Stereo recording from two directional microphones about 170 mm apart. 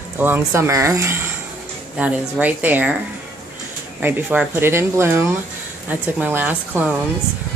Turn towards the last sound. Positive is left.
turn(degrees=-10)  # may be behind; listen again after turning